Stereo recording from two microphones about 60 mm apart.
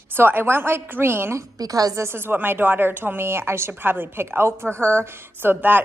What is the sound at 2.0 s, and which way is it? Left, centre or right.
A woman's voice, right.